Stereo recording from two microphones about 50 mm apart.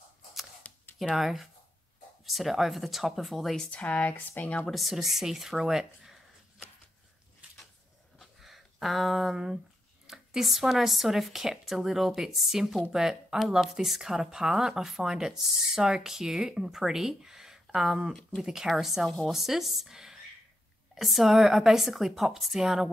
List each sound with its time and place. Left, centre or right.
0.7 s a sound: left
1.1 s speech: centre
3.7 s speech: left
4.6 s speech: centre
8.2 s a sound: centre
10.0 s speech: centre
19.0 s speech: centre
19.3 s speech: centre